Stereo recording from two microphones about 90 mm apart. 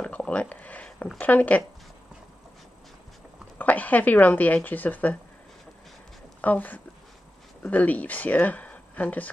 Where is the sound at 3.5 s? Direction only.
20° left (ahead or behind).